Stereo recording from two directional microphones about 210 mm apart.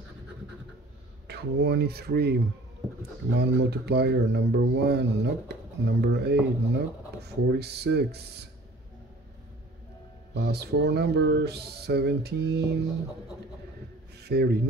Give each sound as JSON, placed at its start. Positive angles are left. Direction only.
{"t": 1.2, "sound": "speech", "side_deg": -50}
{"t": 10.3, "sound": "speech", "side_deg": -50}
{"t": 14.2, "sound": "speech", "side_deg": -50}